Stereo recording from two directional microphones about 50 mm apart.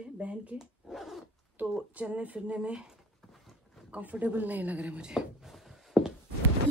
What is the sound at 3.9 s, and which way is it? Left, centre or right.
Speech, right.